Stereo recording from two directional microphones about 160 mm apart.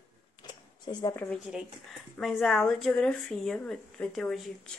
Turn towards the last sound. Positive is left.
turn(degrees=5)  # may be behind; listen again after turning